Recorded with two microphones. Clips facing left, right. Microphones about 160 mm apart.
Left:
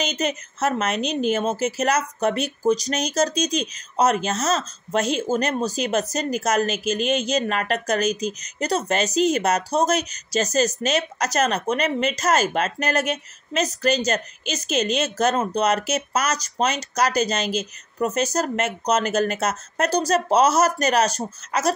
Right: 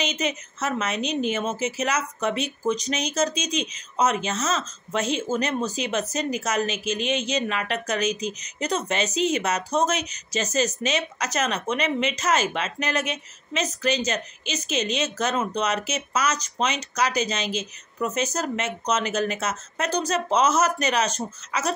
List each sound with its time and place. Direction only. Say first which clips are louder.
0.0 s speech: left 2 dB; 40° left (ahead or behind)
0.8 s a woman's voice: left 3 dB; centre (ahead or behind)
1.3 s speech: left 4 dB; 35° left (ahead or behind)